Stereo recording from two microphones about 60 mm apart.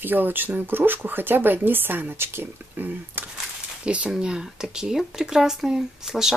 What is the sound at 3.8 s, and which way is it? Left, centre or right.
Speech, centre.